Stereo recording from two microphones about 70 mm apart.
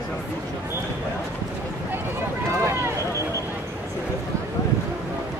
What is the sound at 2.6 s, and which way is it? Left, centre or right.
Run, right.